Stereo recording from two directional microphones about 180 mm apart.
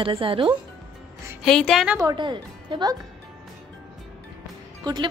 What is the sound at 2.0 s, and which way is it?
A woman's voice, 25° right (ahead or behind).